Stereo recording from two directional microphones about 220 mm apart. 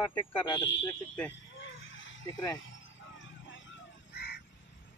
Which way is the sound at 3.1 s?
60° left (ahead or behind).